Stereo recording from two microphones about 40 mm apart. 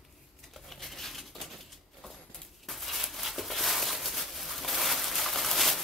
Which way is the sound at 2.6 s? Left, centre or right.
Centre.